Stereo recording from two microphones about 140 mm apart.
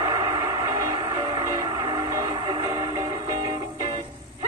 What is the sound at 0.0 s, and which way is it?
Music, 30° right (ahead or behind).